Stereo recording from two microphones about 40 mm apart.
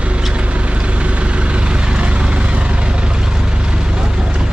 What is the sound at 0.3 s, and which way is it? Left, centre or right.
Vehicle, right.